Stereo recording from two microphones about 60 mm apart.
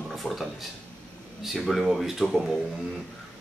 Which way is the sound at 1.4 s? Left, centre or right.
Centre.